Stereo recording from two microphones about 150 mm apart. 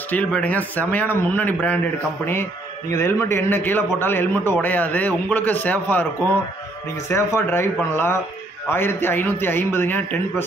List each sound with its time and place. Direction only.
0.1 s a man's voice: 10° left (ahead or behind)
2.9 s a man's voice: 15° left (ahead or behind)
7.3 s a man's voice: 15° left (ahead or behind)